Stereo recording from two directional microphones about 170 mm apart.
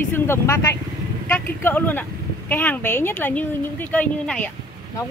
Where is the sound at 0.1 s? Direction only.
15° left (ahead or behind).